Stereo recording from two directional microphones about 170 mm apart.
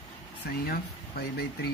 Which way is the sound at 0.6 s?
65° left (ahead or behind).